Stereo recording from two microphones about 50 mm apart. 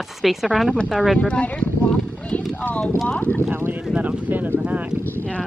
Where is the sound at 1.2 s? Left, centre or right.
Left.